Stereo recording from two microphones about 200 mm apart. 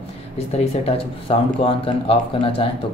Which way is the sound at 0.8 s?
30° left (ahead or behind).